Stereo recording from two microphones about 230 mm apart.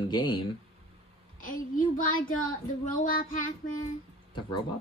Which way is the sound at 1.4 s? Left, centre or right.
Left.